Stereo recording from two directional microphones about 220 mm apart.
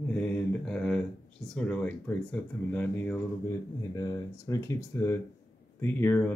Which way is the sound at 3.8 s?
15° left (ahead or behind).